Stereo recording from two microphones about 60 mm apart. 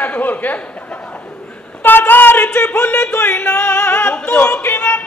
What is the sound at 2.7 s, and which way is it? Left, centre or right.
Music, left.